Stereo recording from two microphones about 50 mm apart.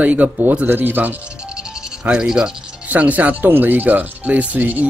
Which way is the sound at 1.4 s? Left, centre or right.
Centre.